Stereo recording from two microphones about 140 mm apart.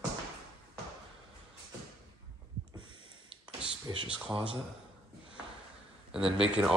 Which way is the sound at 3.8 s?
35° right (ahead or behind).